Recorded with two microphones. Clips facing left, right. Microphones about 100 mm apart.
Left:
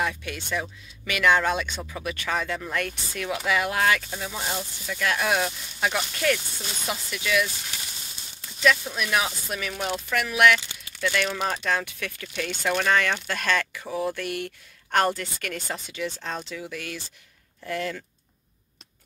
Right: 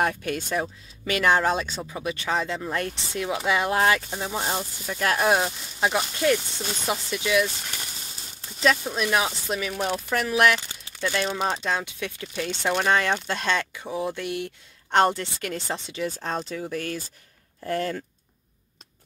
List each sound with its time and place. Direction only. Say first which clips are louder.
0.0 s speech: right 4 dB; 45° right (ahead or behind); by 10.1 s 20° right (ahead or behind)
10.1 s speech: left 1 dB; 35° right (ahead or behind)